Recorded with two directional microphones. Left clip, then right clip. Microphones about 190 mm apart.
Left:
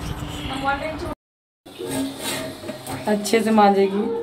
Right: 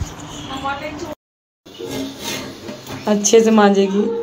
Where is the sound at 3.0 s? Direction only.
15° right (ahead or behind).